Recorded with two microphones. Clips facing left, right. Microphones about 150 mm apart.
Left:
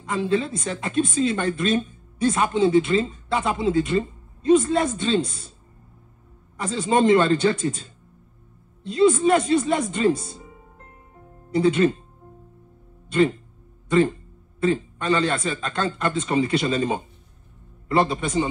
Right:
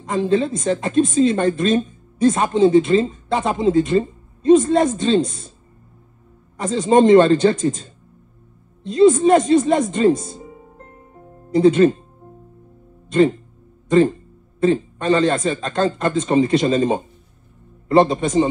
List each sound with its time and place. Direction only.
0.0 s a woman's voice: 35° right (ahead or behind)
6.5 s a woman's voice: 45° right (ahead or behind)
8.9 s a woman's voice: 35° right (ahead or behind)
10.2 s speech: 45° right (ahead or behind)
11.5 s a woman's voice: 30° right (ahead or behind)
13.8 s a man's voice: 40° right (ahead or behind)